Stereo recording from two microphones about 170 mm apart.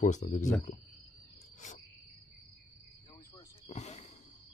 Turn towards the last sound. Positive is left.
turn(degrees=40)  # may be behind; listen again after turning